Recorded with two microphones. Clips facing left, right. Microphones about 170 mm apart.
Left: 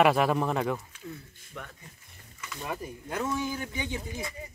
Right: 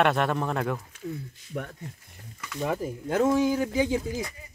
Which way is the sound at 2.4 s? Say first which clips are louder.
Right 7 dB; 65° right (ahead or behind).